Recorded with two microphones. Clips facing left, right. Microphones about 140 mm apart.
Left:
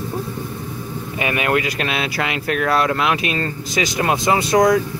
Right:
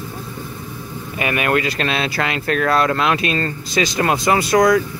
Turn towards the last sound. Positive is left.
turn(degrees=25)  # may be behind; listen again after turning